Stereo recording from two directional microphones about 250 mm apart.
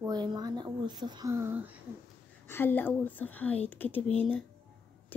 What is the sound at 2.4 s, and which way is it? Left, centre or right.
Speech, centre.